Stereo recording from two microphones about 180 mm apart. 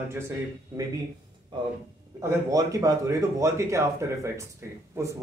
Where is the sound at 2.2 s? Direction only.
15° right (ahead or behind).